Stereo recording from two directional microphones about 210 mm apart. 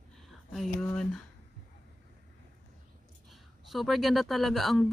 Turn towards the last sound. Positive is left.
turn(degrees=0)  # may be behind; listen again after turning